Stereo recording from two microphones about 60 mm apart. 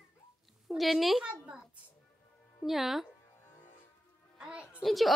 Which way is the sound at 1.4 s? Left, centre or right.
Centre.